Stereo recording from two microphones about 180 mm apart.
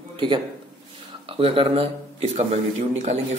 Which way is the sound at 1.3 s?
30° right (ahead or behind).